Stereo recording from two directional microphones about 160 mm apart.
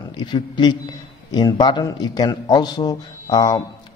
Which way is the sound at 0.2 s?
25° left (ahead or behind).